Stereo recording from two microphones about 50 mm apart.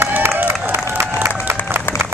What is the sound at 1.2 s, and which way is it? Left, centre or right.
Crowd, right.